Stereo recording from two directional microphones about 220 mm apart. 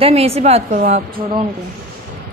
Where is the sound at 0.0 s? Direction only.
25° right (ahead or behind).